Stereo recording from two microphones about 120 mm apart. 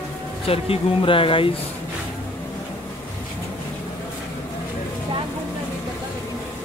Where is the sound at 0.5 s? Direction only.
50° left (ahead or behind).